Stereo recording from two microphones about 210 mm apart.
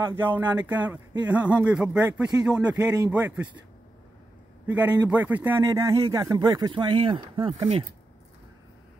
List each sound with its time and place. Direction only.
0.0 s speech: 10° right (ahead or behind)
4.6 s speech: 5° right (ahead or behind); by 7.8 s 25° right (ahead or behind)